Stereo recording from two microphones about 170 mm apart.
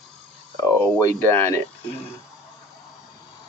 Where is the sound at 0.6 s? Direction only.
15° left (ahead or behind).